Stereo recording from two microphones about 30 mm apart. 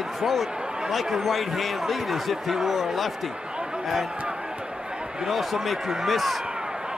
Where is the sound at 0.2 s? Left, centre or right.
Centre.